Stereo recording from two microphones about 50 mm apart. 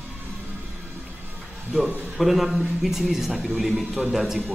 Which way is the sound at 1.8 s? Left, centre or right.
Right.